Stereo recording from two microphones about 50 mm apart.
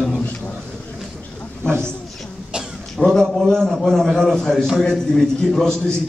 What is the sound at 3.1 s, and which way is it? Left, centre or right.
A man's voice, centre.